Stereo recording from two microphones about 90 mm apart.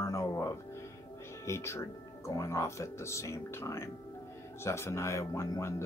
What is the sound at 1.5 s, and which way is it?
Speech, 30° left (ahead or behind).